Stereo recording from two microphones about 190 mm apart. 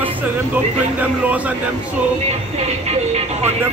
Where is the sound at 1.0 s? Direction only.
10° right (ahead or behind).